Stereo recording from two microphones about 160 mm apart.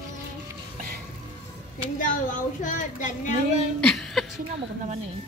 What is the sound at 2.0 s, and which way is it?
Speech, 55° left (ahead or behind).